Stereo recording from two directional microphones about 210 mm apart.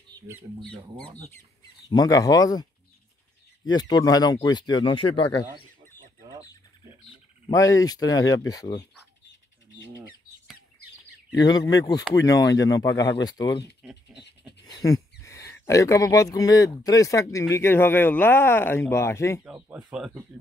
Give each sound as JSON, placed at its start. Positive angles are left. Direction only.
{"t": 0.1, "sound": "speech", "side_deg": -10}
{"t": 1.9, "sound": "speech", "side_deg": 20}
{"t": 7.4, "sound": "speech", "side_deg": 15}
{"t": 11.3, "sound": "speech", "side_deg": 20}
{"t": 13.8, "sound": "a sound", "side_deg": -5}
{"t": 14.7, "sound": "speech", "side_deg": 15}
{"t": 19.4, "sound": "speech", "side_deg": -5}